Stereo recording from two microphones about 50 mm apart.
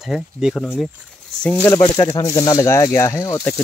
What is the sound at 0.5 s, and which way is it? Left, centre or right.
Speech, centre.